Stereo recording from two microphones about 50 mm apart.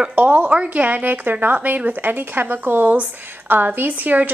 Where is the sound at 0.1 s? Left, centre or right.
Right.